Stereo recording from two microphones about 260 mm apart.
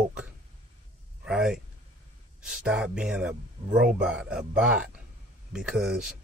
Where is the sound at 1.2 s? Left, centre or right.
Centre.